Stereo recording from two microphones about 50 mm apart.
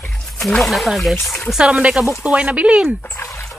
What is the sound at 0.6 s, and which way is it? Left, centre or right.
Speech, centre.